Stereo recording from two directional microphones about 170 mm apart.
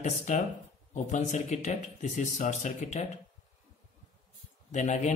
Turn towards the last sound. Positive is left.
turn(degrees=45)  # may be behind; listen again after turning